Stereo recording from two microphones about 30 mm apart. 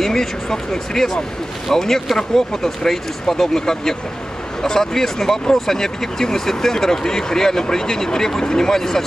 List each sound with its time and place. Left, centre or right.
0.0 s speech: centre